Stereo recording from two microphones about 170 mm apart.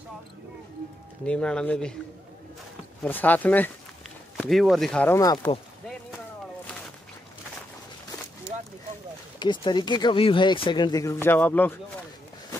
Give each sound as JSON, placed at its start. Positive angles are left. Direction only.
{"t": 1.2, "sound": "speech", "side_deg": 5}
{"t": 3.0, "sound": "speech", "side_deg": 10}
{"t": 5.2, "sound": "speech", "side_deg": 20}
{"t": 9.4, "sound": "speech", "side_deg": 25}